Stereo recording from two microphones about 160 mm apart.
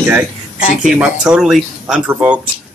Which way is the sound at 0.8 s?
5° right (ahead or behind).